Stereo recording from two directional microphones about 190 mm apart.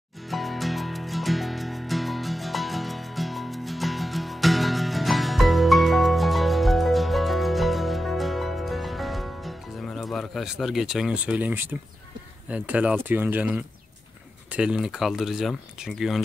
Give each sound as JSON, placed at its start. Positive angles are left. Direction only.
{"t": 0.3, "sound": "music", "side_deg": 0}
{"t": 12.4, "sound": "speech", "side_deg": -5}